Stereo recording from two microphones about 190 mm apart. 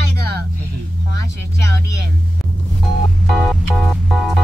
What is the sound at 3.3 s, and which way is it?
Organ, centre (ahead or behind).